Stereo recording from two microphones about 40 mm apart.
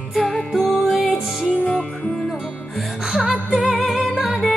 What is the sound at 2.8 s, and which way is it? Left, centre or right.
Music, centre.